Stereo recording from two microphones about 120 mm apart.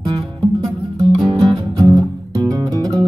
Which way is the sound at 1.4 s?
30° right (ahead or behind).